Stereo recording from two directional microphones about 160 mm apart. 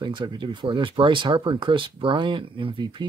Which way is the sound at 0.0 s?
30° right (ahead or behind).